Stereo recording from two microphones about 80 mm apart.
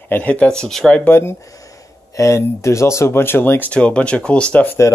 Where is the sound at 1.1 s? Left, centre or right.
Left.